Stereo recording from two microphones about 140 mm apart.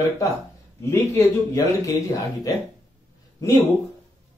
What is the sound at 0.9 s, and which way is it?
Speech, 25° left (ahead or behind).